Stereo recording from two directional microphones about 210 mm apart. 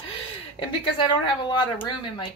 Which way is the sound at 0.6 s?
20° left (ahead or behind).